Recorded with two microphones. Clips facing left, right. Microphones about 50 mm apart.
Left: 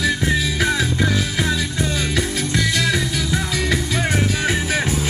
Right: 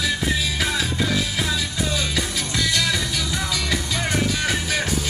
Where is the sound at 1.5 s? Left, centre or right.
Left.